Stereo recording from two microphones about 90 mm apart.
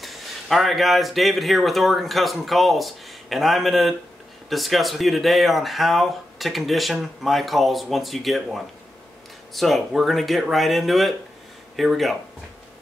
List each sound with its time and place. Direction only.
0.0 s speech: centre (ahead or behind)